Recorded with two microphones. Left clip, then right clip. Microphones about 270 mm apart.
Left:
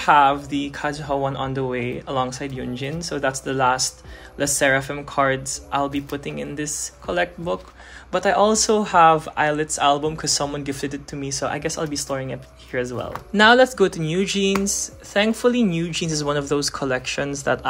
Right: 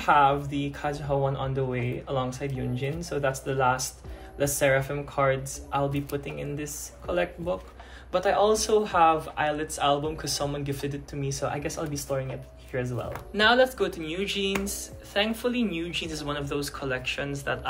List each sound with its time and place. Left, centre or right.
0.0 s speech: left